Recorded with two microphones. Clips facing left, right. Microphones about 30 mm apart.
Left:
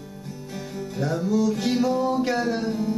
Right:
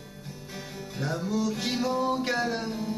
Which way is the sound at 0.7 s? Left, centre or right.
Centre.